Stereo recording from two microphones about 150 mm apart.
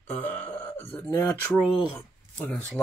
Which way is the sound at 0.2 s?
10° left (ahead or behind).